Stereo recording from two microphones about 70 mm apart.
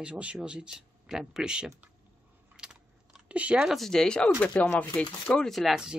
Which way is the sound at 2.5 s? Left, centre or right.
Centre.